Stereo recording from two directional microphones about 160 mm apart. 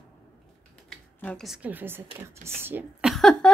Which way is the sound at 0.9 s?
5° left (ahead or behind).